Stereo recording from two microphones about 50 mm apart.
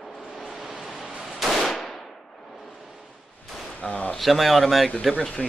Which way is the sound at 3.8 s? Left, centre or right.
Left.